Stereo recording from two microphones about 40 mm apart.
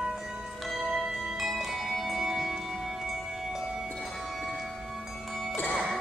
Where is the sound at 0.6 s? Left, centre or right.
Centre.